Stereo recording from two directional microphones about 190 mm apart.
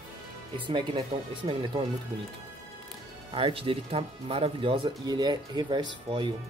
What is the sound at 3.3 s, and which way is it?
Speech, 30° right (ahead or behind).